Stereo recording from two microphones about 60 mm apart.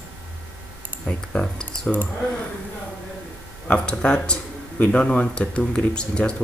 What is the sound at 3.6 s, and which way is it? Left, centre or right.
Speech, left.